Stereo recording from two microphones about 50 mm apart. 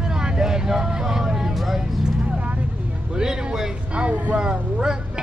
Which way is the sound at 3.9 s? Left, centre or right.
Right.